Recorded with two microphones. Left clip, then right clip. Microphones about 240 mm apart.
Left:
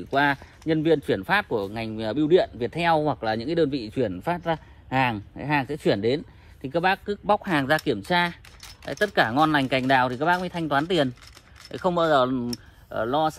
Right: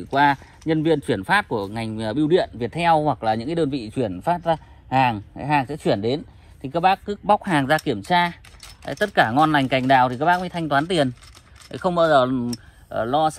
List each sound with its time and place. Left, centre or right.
0.1 s a man's voice: right
7.2 s speech: right
11.8 s speech: right